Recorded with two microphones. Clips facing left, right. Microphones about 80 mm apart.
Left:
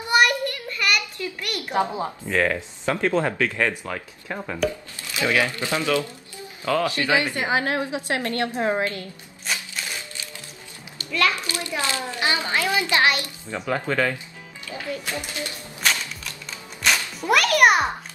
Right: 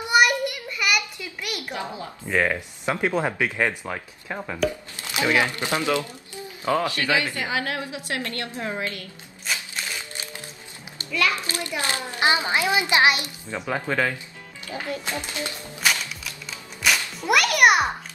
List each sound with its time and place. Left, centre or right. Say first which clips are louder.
0.1 s a sound: even; centre
1.7 s a woman's voice: left 12 dB; left
2.2 s speech: right 1 dB; centre
4.3 s speech: even; centre
4.6 s a child's voice: even; right
6.9 s a woman's voice: left 2 dB; left
11.3 s a child's voice: left 1 dB; right; by 14.1 s centre
15.0 s a child's voice: even; right
15.8 s music: even; centre